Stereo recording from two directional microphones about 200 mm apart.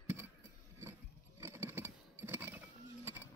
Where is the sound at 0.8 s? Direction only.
15° right (ahead or behind).